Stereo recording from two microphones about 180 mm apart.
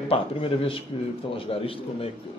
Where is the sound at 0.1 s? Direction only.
30° left (ahead or behind).